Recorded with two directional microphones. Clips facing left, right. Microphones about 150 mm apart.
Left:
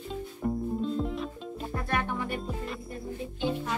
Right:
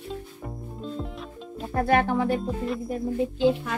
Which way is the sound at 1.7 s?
90° right.